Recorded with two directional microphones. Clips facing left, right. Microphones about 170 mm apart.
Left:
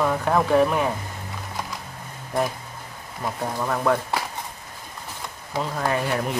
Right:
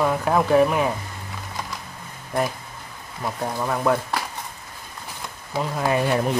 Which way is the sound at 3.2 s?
5° right (ahead or behind).